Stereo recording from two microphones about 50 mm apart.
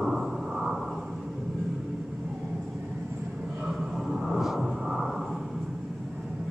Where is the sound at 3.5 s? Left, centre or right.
Centre.